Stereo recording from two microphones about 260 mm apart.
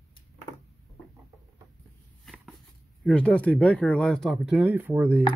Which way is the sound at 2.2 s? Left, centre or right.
Centre.